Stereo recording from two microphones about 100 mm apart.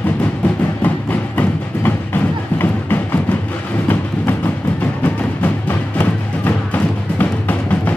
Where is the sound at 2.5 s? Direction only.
20° left (ahead or behind).